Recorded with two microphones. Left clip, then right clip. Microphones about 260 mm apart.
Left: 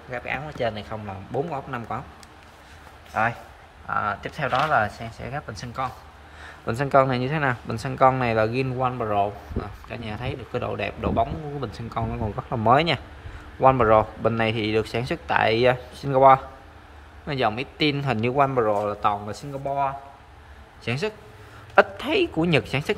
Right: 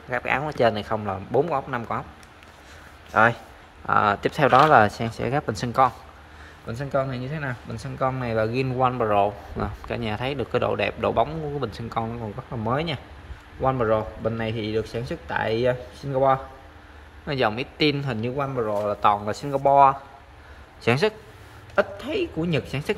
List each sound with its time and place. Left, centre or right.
0.1 s a man's voice: centre
3.1 s a man's voice: right
6.6 s a man's voice: centre
21.7 s speech: centre